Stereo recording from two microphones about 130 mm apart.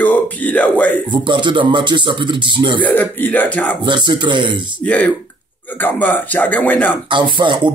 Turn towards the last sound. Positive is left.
turn(degrees=-35)  # may be behind; listen again after turning